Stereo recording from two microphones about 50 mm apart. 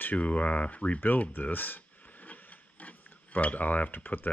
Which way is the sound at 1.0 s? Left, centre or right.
Left.